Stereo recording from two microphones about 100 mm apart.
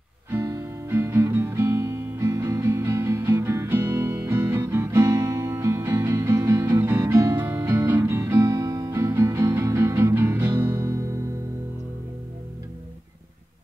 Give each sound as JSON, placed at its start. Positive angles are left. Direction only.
{"t": 0.3, "sound": "music", "side_deg": -25}